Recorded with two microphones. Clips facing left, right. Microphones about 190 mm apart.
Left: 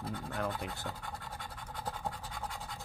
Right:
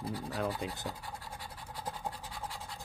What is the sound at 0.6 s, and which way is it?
Speech, 15° right (ahead or behind).